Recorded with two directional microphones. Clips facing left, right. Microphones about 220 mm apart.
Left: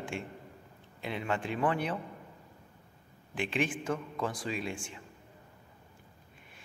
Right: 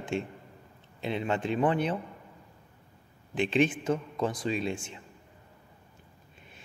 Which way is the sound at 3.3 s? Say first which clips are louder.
Right 7 dB; 25° right (ahead or behind).